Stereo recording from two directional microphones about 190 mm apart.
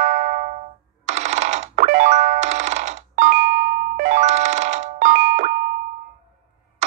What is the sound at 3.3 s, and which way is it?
Music, 55° right (ahead or behind).